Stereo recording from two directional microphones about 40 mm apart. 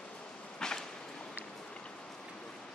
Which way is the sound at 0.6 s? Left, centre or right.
Centre.